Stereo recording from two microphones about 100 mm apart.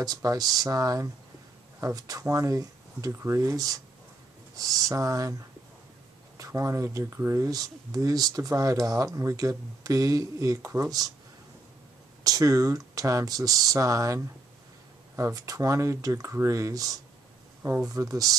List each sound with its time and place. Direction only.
0.0 s speech: 40° right (ahead or behind)
6.3 s speech: 35° right (ahead or behind)
12.2 s speech: 35° right (ahead or behind)